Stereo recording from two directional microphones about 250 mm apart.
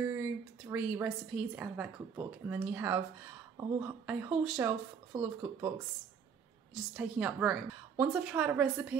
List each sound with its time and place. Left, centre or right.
0.0 s a woman's voice: centre
5.1 s speech: centre
6.7 s a woman's voice: centre